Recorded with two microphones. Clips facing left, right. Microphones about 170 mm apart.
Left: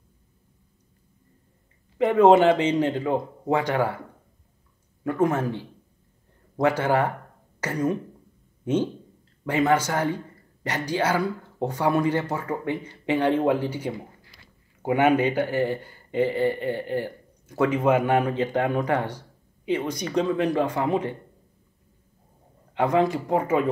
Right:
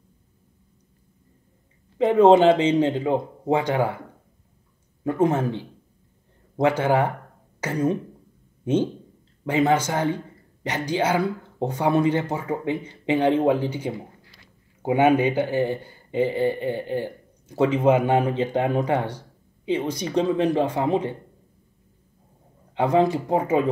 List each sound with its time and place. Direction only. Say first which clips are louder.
2.0 s speech: right 1 dB; 30° right (ahead or behind)
5.0 s speech: right 2 dB; 25° right (ahead or behind)
9.4 s speech: right 1 dB; 25° right (ahead or behind)
22.8 s speech: right 2 dB; 25° right (ahead or behind)